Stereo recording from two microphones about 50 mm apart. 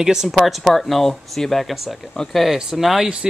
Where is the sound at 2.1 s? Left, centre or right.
Centre.